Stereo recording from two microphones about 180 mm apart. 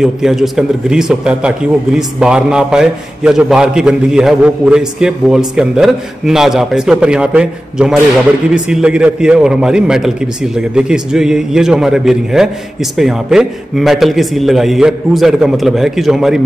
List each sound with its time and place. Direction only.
0.0 s a man's voice: centre (ahead or behind)